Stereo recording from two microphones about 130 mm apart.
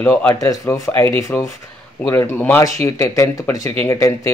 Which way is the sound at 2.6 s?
25° left (ahead or behind).